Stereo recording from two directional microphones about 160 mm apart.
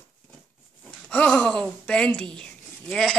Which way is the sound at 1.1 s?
5° left (ahead or behind).